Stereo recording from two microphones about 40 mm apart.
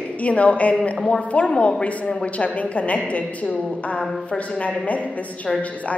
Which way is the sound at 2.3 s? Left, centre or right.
Left.